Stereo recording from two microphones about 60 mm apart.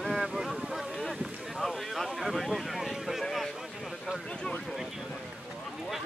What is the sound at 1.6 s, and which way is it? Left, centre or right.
Speech, centre.